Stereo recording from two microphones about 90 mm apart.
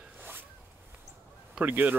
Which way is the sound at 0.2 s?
20° right (ahead or behind).